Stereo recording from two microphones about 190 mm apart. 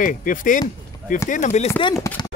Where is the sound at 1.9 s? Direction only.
15° left (ahead or behind).